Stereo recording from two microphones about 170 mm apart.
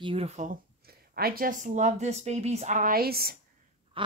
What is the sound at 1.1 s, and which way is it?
A woman's voice, 60° right (ahead or behind).